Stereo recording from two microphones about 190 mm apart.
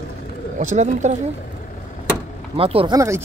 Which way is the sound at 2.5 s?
30° right (ahead or behind).